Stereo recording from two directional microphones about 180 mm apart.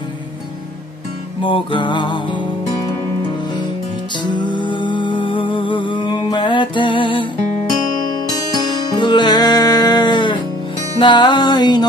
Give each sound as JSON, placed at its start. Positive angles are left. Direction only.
{"t": 1.4, "sound": "music", "side_deg": 30}
{"t": 4.2, "sound": "music", "side_deg": 25}